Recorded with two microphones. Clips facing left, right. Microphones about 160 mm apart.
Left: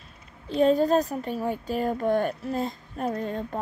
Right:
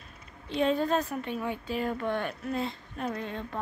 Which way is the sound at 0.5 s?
40° left (ahead or behind).